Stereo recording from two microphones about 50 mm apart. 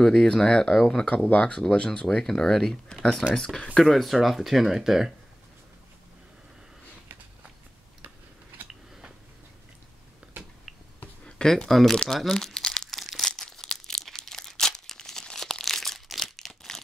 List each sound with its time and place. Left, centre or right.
0.0 s speech: centre
1.1 s speech: left; by 3.6 s centre
3.8 s speech: centre
11.2 s a sound: centre
11.5 s speech: centre
12.1 s crumpling: centre
13.4 s crumpling: centre